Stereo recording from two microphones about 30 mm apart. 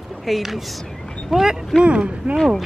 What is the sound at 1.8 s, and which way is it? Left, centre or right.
Speech, right.